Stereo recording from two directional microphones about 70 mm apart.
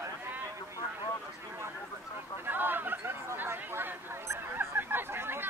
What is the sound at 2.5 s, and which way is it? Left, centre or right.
Chatter, right.